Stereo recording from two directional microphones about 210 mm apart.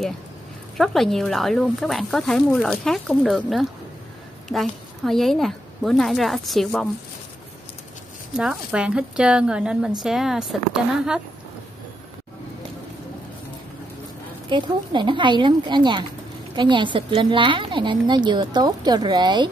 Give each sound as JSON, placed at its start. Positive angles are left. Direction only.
{"t": 0.7, "sound": "speech", "side_deg": 0}
{"t": 8.4, "sound": "speech", "side_deg": -5}
{"t": 14.5, "sound": "a woman's voice", "side_deg": -20}